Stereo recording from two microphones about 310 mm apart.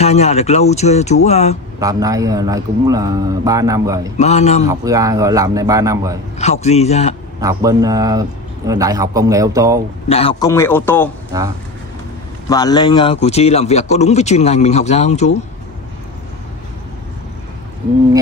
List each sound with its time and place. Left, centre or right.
0.0 s a man's voice: left
1.8 s a man's voice: centre
4.2 s a man's voice: left
4.6 s a man's voice: centre
6.3 s a man's voice: left
7.3 s a man's voice: centre
10.0 s a man's voice: centre
11.3 s a man's voice: centre
12.4 s a man's voice: centre